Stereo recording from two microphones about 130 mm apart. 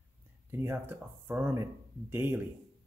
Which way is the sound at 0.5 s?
15° right (ahead or behind).